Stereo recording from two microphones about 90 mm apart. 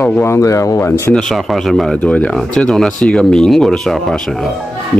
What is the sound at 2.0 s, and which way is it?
Speech, 15° left (ahead or behind).